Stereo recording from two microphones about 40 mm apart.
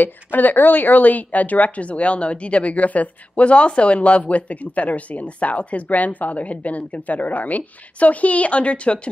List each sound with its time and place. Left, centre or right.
0.0 s a woman's voice: left